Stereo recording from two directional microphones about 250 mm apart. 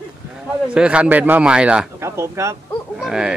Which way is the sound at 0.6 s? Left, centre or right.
Centre.